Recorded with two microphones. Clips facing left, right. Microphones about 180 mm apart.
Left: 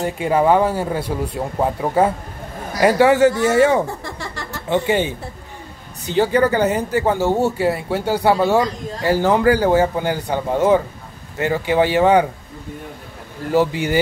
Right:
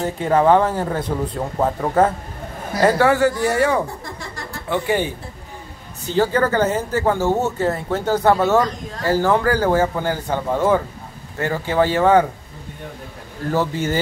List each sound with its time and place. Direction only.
0.0 s speech: 10° left (ahead or behind)
4.2 s a sound: 75° left (ahead or behind)
4.6 s speech: 20° left (ahead or behind)
13.5 s speech: 15° left (ahead or behind)